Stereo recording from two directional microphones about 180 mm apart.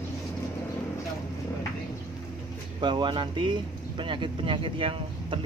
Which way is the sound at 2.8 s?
25° right (ahead or behind).